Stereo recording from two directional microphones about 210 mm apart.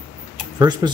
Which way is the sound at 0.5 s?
20° right (ahead or behind).